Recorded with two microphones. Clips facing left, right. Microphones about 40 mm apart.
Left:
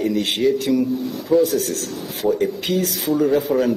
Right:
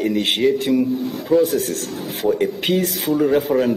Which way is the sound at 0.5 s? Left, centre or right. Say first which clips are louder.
Right 1 dB; right.